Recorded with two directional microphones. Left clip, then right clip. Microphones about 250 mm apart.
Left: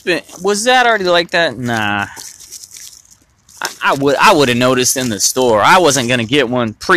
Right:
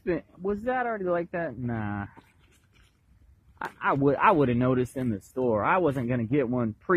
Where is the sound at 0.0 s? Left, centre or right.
Centre.